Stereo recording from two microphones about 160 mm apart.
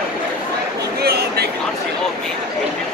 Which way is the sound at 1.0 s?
90° right.